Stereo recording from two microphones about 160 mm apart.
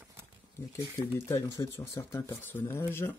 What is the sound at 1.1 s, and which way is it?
Speech, 15° left (ahead or behind).